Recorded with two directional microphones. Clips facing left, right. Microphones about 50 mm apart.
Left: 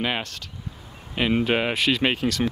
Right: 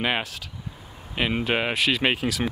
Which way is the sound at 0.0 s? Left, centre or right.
Centre.